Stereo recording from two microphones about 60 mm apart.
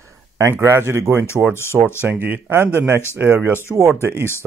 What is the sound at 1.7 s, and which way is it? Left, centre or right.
Speech, centre.